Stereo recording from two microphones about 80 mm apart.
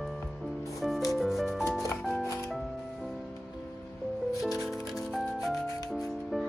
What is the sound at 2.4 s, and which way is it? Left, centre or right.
Music, centre.